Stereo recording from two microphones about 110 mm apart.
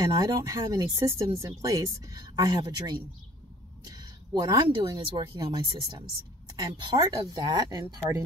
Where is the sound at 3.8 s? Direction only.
40° right (ahead or behind).